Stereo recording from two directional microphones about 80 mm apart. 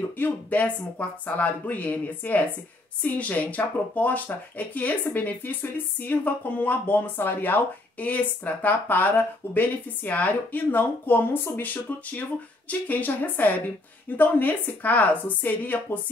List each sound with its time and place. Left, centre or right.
0.2 s speech: centre